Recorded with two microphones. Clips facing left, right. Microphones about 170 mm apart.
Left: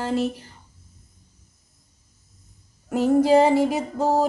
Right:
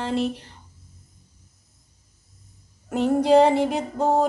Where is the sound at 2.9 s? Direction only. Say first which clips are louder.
Left 1 dB; 5° left (ahead or behind).